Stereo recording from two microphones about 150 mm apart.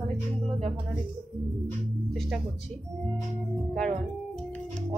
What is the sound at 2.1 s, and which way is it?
Music, 5° right (ahead or behind).